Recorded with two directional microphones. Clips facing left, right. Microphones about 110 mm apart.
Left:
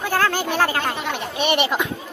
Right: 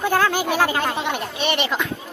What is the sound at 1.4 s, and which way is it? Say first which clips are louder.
Speech: left 3 dB; 10° left (ahead or behind).